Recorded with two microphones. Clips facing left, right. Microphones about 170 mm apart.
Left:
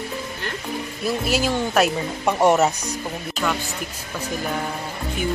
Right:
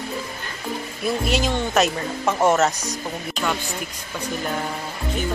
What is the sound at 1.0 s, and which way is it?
Speech, 5° left (ahead or behind).